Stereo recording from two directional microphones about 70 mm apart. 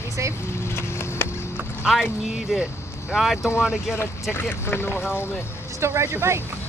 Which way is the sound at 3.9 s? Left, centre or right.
Left.